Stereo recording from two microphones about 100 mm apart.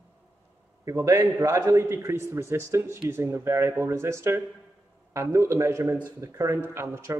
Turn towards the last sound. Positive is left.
turn(degrees=-25)  # may be behind; listen again after turning